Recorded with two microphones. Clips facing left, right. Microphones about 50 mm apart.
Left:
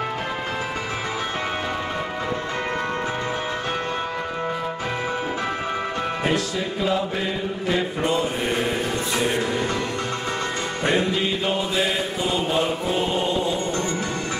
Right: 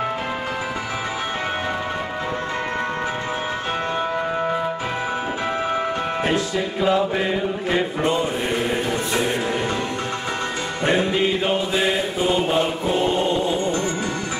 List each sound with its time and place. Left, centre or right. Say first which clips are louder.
6.3 s music: right 2 dB; centre
10.9 s music: right 3 dB; right
12.9 s choir: right 5 dB; centre
13.3 s music: right 2 dB; right